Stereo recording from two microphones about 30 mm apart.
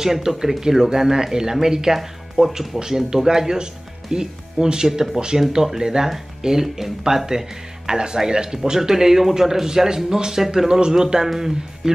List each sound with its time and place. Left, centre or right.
0.0 s speech: centre
2.0 s speech: centre
2.8 s speech: centre
7.2 s speech: right
8.7 s speech: centre